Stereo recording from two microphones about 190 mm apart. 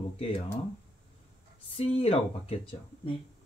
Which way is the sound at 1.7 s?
30° left (ahead or behind).